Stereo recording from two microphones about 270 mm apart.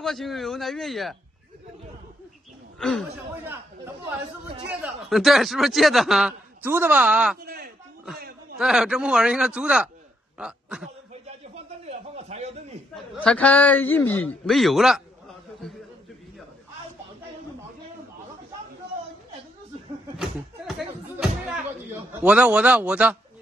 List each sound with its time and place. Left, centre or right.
0.0 s speech: centre
2.8 s speech: centre
4.8 s speech: centre
7.4 s a sound: right
8.5 s speech: centre
11.2 s a sound: right
12.9 s a man's voice: centre
22.2 s speech: centre